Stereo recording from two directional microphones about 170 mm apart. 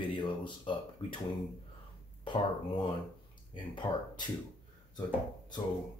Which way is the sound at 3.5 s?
25° left (ahead or behind).